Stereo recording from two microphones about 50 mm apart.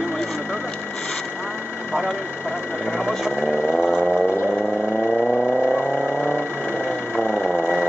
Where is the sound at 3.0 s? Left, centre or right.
Centre.